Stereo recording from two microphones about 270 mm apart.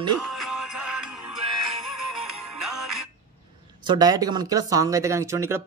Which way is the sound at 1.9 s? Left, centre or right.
Right.